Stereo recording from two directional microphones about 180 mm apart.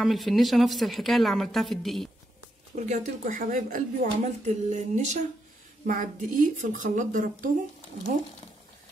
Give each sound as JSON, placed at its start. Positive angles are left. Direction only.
{"t": 0.0, "sound": "speech", "side_deg": 0}
{"t": 2.7, "sound": "a woman's voice", "side_deg": -45}